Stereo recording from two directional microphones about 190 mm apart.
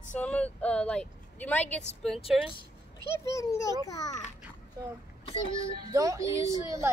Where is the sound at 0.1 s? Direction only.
5° left (ahead or behind).